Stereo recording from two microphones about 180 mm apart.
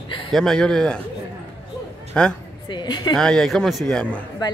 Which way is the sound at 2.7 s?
25° left (ahead or behind).